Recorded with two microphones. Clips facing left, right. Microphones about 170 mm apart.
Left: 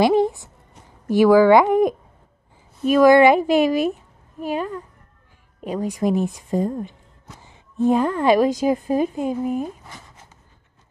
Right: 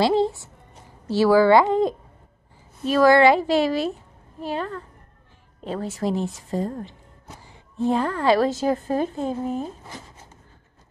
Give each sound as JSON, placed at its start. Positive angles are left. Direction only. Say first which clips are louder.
{"t": 0.0, "sound": "a woman's voice", "louder": "left 3 dB", "side_deg": 15}